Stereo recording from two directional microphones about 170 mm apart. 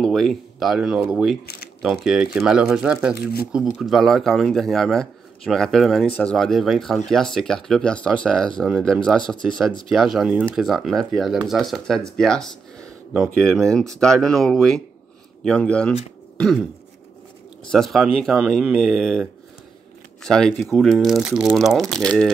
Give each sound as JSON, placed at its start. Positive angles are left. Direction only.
{"t": 0.0, "sound": "a man's voice", "side_deg": 0}
{"t": 1.4, "sound": "speech", "side_deg": 65}
{"t": 1.8, "sound": "a man's voice", "side_deg": 0}
{"t": 12.2, "sound": "a sound", "side_deg": 5}
{"t": 13.1, "sound": "a man's voice", "side_deg": 0}
{"t": 17.6, "sound": "a man's voice", "side_deg": 0}